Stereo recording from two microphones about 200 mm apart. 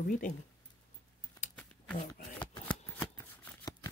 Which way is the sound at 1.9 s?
25° left (ahead or behind).